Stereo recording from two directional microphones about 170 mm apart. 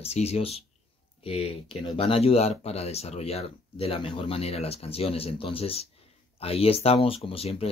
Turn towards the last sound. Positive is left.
turn(degrees=35)  # may be behind; listen again after turning